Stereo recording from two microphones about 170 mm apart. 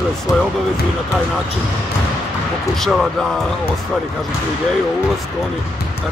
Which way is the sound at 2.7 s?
Centre (ahead or behind).